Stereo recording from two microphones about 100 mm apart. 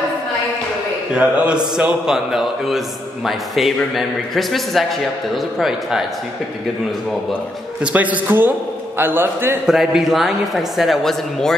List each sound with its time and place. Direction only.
1.1 s mantra: 10° right (ahead or behind)
1.8 s a woman's voice: 10° right (ahead or behind)
7.8 s a man's voice: 15° right (ahead or behind)
9.7 s a woman's voice: 5° right (ahead or behind)